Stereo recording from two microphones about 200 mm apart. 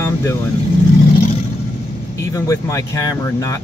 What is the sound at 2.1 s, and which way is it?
Speech, 15° left (ahead or behind).